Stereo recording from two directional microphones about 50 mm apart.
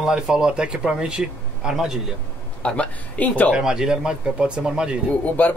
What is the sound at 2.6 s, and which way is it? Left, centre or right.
Speech, left.